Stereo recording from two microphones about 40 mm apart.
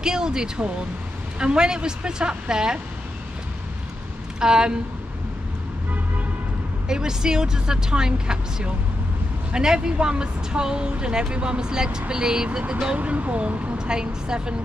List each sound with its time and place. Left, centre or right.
0.0 s a woman's voice: centre
4.4 s a woman's voice: centre
6.9 s a woman's voice: centre
12.9 s speech: right
13.7 s a woman's voice: centre